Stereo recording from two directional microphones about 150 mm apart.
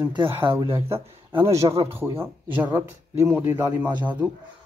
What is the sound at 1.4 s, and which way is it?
Speech, 20° right (ahead or behind).